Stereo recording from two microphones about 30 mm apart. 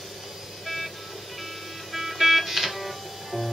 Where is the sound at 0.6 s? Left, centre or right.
Centre.